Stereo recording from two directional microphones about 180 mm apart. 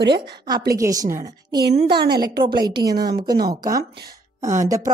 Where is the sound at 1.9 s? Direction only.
60° right (ahead or behind).